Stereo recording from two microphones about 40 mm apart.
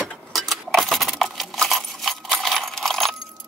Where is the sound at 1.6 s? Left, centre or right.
Centre.